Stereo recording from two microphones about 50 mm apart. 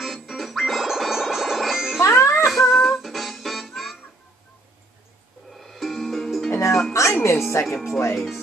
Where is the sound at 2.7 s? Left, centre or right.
Centre.